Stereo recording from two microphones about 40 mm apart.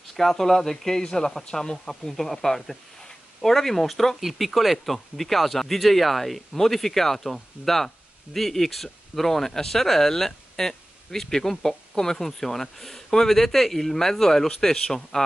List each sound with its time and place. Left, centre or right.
0.1 s speech: centre
1.9 s speech: centre